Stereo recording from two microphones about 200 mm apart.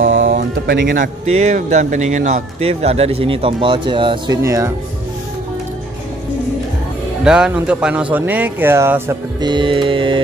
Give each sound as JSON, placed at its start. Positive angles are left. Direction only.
{"t": 0.0, "sound": "music", "side_deg": -70}
{"t": 0.3, "sound": "speech", "side_deg": -50}
{"t": 7.2, "sound": "speech", "side_deg": -5}
{"t": 9.5, "sound": "music", "side_deg": -25}